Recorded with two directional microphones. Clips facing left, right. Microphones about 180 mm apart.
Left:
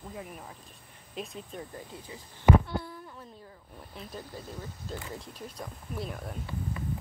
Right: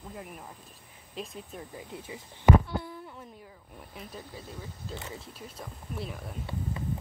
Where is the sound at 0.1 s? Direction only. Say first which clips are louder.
Even; centre (ahead or behind).